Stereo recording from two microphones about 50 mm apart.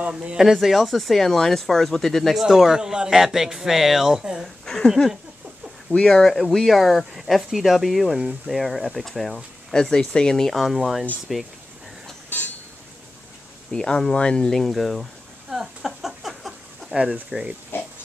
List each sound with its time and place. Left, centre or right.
0.1 s speech: right
0.4 s speech: centre
2.4 s speech: centre
4.8 s speech: centre
6.2 s speech: centre
13.7 s speech: centre
15.5 s a sound: centre
16.9 s speech: centre